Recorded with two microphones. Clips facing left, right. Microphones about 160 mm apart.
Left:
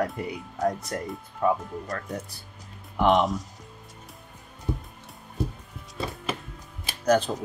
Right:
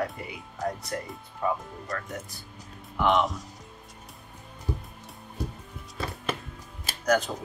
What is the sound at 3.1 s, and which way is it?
Speech, centre (ahead or behind).